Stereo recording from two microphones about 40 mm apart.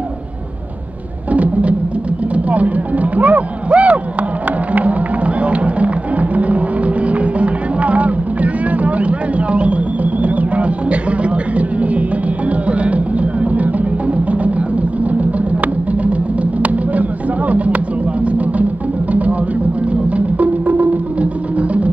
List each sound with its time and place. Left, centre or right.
1.3 s music: right
2.3 s a sound: right
4.7 s music: right
17.5 s music: right
19.9 s music: right